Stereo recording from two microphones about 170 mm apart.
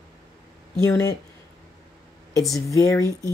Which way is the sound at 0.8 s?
20° left (ahead or behind).